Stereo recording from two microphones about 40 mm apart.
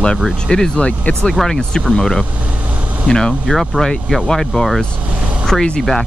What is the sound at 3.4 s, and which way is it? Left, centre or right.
Speech, centre.